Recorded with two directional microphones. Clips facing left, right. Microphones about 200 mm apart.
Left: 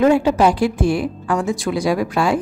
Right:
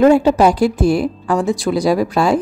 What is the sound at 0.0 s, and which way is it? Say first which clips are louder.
A woman's voice: right 3 dB; 40° right (ahead or behind).